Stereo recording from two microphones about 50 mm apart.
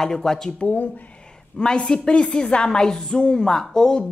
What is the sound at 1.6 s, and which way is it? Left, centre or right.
A woman's voice, centre.